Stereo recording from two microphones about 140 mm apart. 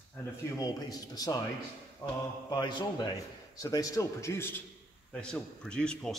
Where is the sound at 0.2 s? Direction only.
25° left (ahead or behind).